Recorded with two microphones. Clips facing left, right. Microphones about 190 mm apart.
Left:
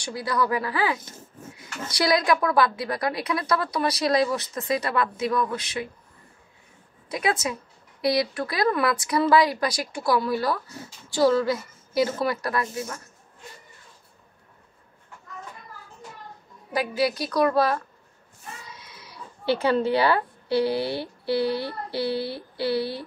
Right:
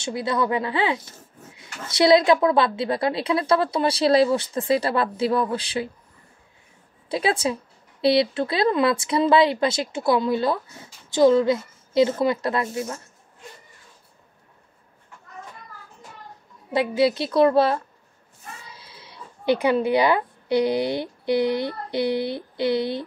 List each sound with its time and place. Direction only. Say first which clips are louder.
0.0 s a woman's voice: right 2 dB; 25° right (ahead or behind)
7.1 s a woman's voice: right 3 dB; 30° right (ahead or behind)
16.7 s a woman's voice: right 4 dB; 25° right (ahead or behind)
18.7 s a sound: even; 30° right (ahead or behind)
19.4 s speech: right 2 dB; 15° right (ahead or behind)